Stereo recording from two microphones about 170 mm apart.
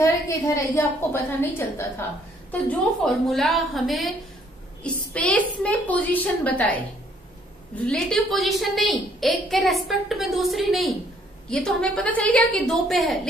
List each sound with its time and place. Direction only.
0.0 s a woman's voice: 20° left (ahead or behind); by 13.3 s centre (ahead or behind)